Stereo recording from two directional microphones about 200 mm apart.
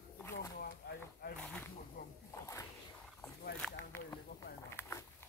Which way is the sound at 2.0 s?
45° left (ahead or behind).